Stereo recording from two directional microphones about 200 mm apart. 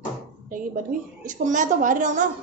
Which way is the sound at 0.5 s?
40° right (ahead or behind).